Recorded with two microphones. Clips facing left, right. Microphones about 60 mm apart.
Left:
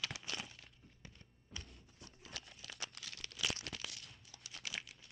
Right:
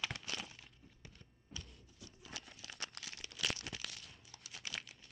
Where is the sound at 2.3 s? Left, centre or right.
Centre.